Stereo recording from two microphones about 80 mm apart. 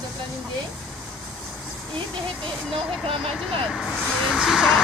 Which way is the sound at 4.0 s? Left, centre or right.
Centre.